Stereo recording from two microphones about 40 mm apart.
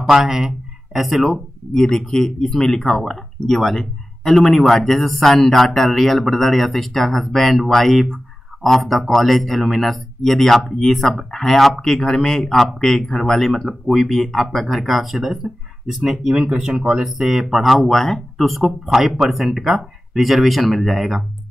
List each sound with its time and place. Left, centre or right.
0.1 s speech: centre
1.7 s speech: centre
13.5 s speech: centre
16.4 s speech: right; by 21.2 s centre